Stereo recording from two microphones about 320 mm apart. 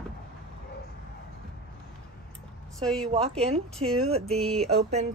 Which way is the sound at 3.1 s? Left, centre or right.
Centre.